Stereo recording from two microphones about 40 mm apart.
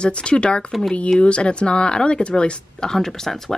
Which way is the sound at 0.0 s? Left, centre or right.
Left.